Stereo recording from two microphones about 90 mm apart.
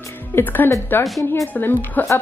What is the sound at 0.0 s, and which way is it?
Music, 25° left (ahead or behind).